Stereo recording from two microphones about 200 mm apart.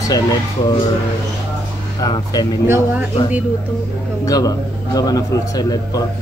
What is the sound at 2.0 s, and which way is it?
Speech, 20° left (ahead or behind).